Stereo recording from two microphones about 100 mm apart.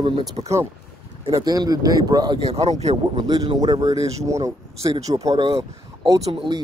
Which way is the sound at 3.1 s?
45° right (ahead or behind).